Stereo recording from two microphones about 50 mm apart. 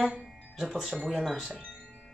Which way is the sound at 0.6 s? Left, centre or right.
Centre.